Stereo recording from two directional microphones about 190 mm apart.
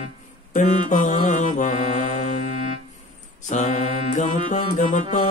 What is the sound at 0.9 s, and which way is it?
Music, 40° left (ahead or behind).